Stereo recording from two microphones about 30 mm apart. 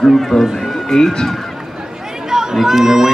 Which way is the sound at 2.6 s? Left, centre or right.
Centre.